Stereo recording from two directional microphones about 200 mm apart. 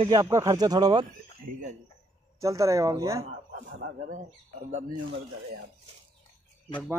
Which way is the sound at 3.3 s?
40° right (ahead or behind).